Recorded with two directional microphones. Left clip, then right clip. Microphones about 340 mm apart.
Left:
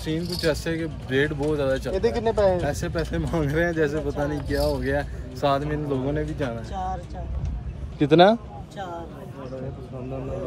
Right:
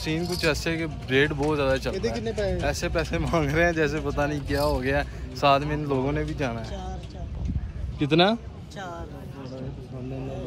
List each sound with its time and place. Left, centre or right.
0.1 s speech: centre
1.0 s speech: right
1.3 s speech: centre
2.0 s speech: left
2.6 s speech: centre
8.0 s speech: centre